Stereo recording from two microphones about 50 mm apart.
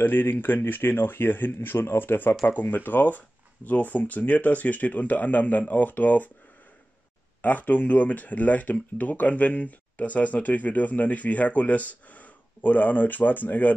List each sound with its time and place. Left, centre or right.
0.0 s speech: left
7.4 s speech: left